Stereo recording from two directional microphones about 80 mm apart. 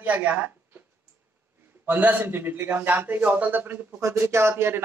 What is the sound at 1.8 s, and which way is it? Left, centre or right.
Speech, right.